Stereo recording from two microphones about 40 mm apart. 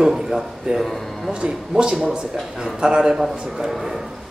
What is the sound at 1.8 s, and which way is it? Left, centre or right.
A man's voice, centre.